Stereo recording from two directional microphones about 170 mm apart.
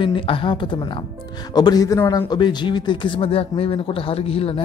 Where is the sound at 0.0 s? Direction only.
30° left (ahead or behind).